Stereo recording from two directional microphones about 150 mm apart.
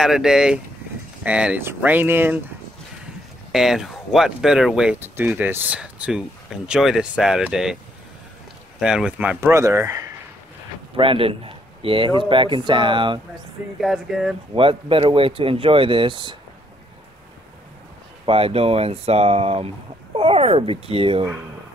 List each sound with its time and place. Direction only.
0.0 s speech: 5° right (ahead or behind)
3.5 s speech: centre (ahead or behind)
8.7 s speech: 5° right (ahead or behind)
9.4 s speech: 20° right (ahead or behind)
11.0 s a man's voice: 35° right (ahead or behind)
13.7 s speech: centre (ahead or behind)
14.5 s a man's voice: 35° right (ahead or behind)
18.2 s a man's voice: 40° right (ahead or behind)